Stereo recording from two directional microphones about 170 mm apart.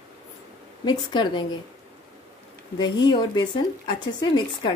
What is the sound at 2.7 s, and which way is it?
Speech, 25° left (ahead or behind).